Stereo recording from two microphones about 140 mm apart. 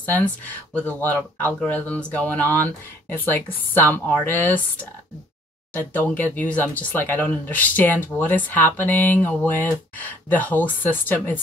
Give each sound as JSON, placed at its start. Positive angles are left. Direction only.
{"t": 0.0, "sound": "speech", "side_deg": 10}
{"t": 5.7, "sound": "speech", "side_deg": 15}